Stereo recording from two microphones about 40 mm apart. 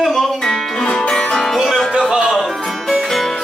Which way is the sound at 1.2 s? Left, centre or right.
Centre.